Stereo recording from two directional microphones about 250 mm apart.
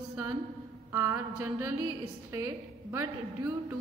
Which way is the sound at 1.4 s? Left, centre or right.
Right.